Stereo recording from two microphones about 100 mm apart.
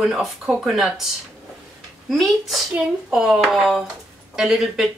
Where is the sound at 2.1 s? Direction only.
Centre (ahead or behind).